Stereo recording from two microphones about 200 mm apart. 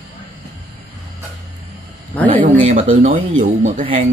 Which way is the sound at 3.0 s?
40° right (ahead or behind).